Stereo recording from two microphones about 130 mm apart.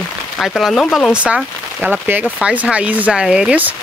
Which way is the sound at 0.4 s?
Centre (ahead or behind).